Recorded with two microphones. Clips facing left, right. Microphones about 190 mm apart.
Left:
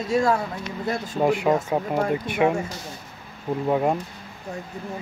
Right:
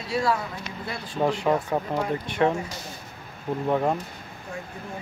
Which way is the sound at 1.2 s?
10° left (ahead or behind).